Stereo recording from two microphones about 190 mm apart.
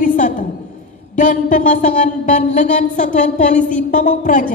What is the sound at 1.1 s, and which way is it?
Speech, 40° left (ahead or behind).